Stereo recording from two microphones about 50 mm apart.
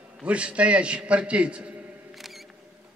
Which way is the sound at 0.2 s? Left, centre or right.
Right.